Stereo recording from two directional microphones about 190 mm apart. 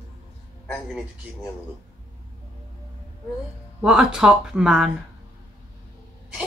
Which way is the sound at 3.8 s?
5° right (ahead or behind).